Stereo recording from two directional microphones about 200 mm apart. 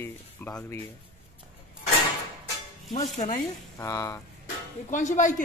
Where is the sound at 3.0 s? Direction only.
35° left (ahead or behind).